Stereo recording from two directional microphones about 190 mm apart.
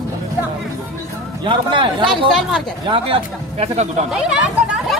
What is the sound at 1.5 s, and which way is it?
Speech, 25° right (ahead or behind).